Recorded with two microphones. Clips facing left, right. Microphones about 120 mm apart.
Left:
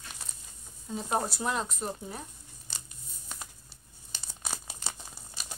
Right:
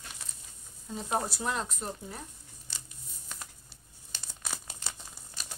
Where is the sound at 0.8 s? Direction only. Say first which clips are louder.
Left 1 dB; 5° left (ahead or behind).